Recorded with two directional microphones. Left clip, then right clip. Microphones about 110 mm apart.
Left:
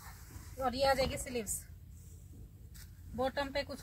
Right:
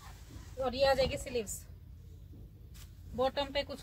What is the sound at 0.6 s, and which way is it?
Speech, 20° right (ahead or behind).